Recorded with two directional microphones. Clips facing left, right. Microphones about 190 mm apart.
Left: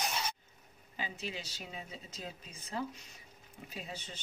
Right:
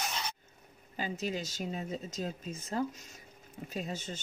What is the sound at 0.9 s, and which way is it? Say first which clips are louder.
Speech: right 7 dB; 45° right (ahead or behind).